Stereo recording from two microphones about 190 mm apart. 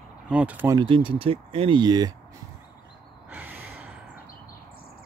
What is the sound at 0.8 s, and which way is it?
Speech, 25° right (ahead or behind).